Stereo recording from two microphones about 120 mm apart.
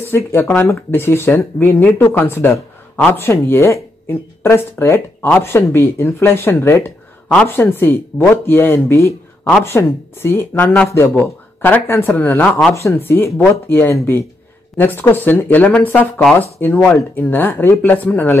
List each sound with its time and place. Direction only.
0.0 s a man's voice: 20° left (ahead or behind)